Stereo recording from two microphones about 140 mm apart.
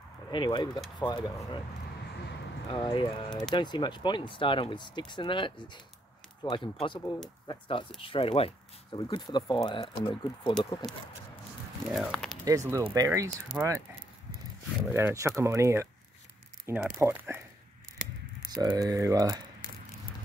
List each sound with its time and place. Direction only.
0.3 s speech: 35° left (ahead or behind)
2.7 s speech: 35° left (ahead or behind)
11.9 s speech: centre (ahead or behind)
12.4 s speech: 20° right (ahead or behind)
13.5 s speech: 10° right (ahead or behind)
14.9 s speech: 20° right (ahead or behind)
18.5 s speech: 30° right (ahead or behind)